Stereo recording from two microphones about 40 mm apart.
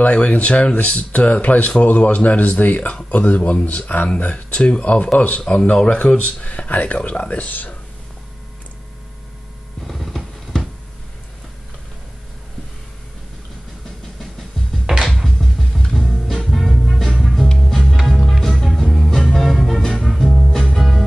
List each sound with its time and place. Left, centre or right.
0.0 s speech: left
4.2 s speech: left
9.8 s a sound: centre
14.9 s music: right
15.2 s music: centre